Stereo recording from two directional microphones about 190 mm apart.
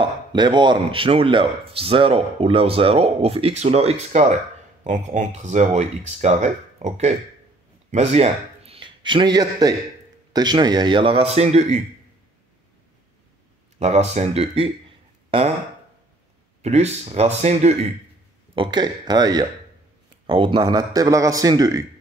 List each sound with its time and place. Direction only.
0.0 s a man's voice: 25° right (ahead or behind)
13.7 s speech: 35° right (ahead or behind)
16.6 s speech: 35° right (ahead or behind)
18.5 s speech: 25° right (ahead or behind)